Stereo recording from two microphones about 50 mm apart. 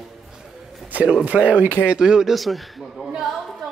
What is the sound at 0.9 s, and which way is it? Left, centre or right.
Speech, right.